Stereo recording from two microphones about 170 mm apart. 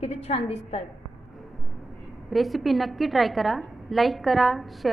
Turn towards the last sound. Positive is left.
turn(degrees=0)  # may be behind; listen again after turning